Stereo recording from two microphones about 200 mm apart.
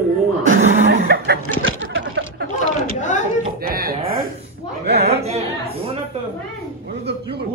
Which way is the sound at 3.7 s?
50° right (ahead or behind).